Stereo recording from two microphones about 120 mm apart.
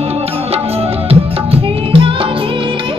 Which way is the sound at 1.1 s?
50° right (ahead or behind).